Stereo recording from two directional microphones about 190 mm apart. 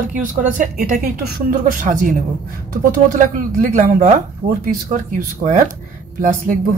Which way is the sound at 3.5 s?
40° right (ahead or behind).